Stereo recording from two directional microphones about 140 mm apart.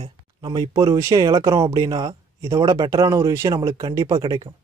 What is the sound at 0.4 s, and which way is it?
Speech, 25° right (ahead or behind).